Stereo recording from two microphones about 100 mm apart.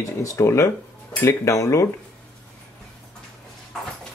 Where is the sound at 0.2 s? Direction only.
30° left (ahead or behind).